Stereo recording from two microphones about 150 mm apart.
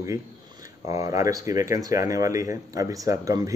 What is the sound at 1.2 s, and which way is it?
Speech, 20° right (ahead or behind).